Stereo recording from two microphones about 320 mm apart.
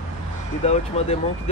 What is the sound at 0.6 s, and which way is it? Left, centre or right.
Speech, centre.